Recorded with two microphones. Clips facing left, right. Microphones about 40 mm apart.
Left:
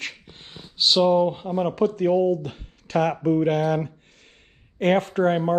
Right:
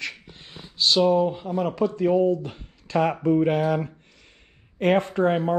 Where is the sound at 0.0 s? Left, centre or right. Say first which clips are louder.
Right 1 dB; left.